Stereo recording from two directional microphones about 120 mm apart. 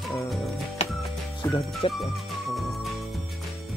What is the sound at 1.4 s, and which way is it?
Speech, 35° left (ahead or behind).